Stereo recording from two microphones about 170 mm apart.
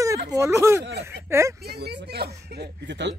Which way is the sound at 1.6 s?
70° right (ahead or behind).